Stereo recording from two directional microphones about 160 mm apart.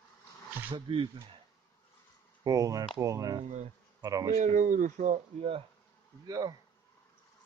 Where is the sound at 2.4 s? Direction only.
20° right (ahead or behind).